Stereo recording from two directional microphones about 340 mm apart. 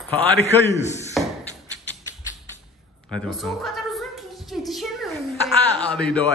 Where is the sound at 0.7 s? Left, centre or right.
Centre.